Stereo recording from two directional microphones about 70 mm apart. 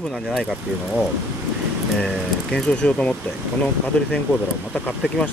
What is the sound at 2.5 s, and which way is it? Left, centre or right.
Speech, centre.